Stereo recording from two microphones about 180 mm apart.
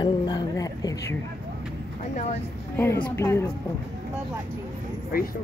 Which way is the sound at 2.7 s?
15° left (ahead or behind).